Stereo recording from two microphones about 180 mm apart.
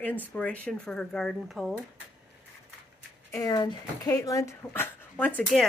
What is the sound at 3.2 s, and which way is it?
A woman's voice, 20° left (ahead or behind).